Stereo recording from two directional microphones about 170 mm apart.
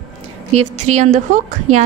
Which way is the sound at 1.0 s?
45° right (ahead or behind).